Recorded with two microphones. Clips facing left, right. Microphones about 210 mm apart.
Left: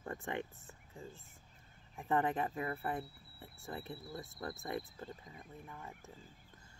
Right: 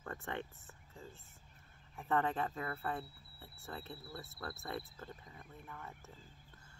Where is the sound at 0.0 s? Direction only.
15° left (ahead or behind).